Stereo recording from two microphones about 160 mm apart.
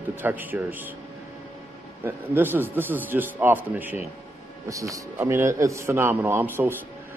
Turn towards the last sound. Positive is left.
turn(degrees=-10)  # may be behind; listen again after turning